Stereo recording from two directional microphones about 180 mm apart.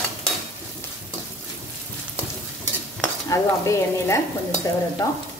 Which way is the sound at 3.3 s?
20° left (ahead or behind).